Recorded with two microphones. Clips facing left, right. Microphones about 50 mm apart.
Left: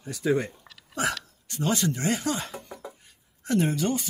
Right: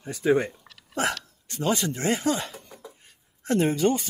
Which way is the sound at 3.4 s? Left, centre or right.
Right.